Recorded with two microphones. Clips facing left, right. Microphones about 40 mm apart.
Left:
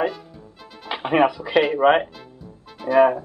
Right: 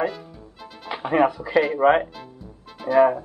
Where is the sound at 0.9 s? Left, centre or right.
Left.